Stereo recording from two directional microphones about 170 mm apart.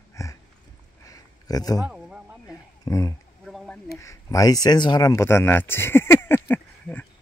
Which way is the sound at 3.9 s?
20° left (ahead or behind).